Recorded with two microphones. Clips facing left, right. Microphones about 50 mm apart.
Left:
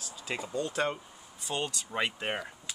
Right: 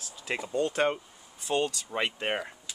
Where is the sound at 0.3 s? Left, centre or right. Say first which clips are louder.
Right 4 dB; right.